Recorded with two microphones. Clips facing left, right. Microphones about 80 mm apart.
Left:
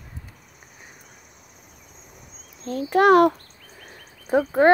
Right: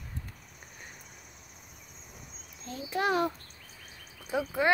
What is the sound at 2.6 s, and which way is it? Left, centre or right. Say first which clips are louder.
Speech: left 13 dB; left.